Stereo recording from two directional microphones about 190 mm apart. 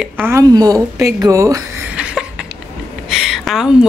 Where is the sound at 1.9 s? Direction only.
5° right (ahead or behind).